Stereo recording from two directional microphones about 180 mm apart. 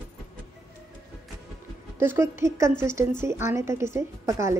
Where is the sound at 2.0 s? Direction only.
15° right (ahead or behind).